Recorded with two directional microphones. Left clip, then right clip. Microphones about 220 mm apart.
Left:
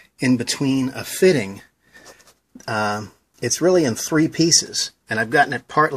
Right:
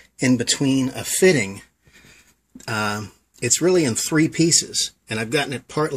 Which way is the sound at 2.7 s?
5° right (ahead or behind).